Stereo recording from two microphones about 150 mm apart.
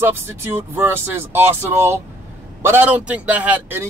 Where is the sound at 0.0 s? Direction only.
15° right (ahead or behind).